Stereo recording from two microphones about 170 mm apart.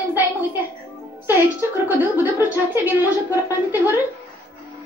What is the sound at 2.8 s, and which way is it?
A woman's voice, 10° right (ahead or behind).